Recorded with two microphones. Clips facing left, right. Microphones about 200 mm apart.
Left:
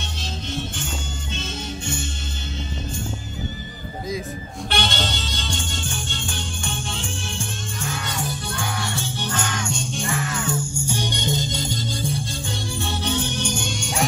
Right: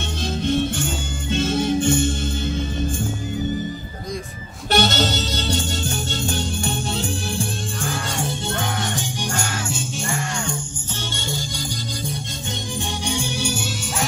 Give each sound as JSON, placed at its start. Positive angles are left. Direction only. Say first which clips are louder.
{"t": 1.3, "sound": "music", "louder": "right 13 dB", "side_deg": -55}
{"t": 4.6, "sound": "music", "louder": "right 7 dB", "side_deg": -40}
{"t": 7.9, "sound": "music", "louder": "right 2 dB", "side_deg": -25}
{"t": 13.0, "sound": "music", "louder": "even", "side_deg": -10}